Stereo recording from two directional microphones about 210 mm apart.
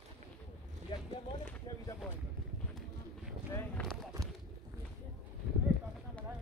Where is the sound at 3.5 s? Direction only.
5° left (ahead or behind).